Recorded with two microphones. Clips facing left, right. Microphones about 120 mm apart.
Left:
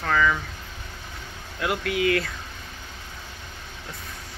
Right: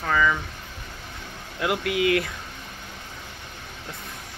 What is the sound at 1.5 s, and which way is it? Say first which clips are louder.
Speech: right 1 dB; 20° right (ahead or behind).